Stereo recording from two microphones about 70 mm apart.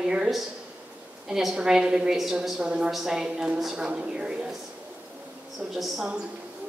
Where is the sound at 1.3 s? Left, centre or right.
Centre.